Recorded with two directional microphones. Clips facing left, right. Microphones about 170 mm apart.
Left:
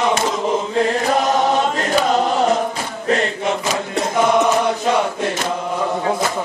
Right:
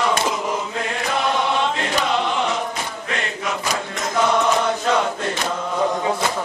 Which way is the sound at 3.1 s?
35° left (ahead or behind).